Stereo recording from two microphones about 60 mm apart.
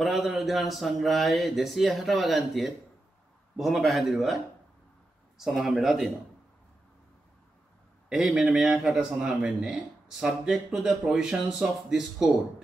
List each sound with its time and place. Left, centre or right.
0.0 s speech: centre
5.4 s speech: centre
8.1 s speech: centre